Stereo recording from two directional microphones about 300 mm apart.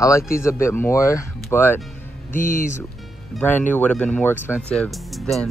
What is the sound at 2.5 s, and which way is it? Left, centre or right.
Speech, left.